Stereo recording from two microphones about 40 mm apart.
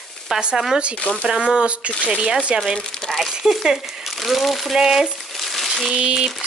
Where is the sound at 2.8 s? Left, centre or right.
Centre.